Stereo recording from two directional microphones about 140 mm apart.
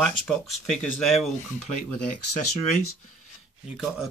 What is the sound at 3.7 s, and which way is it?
Speech, 5° right (ahead or behind).